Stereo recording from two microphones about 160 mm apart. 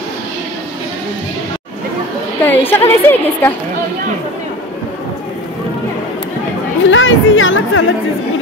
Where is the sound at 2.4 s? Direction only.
15° left (ahead or behind).